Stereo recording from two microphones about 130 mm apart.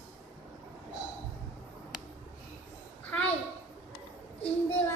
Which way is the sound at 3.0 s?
15° left (ahead or behind).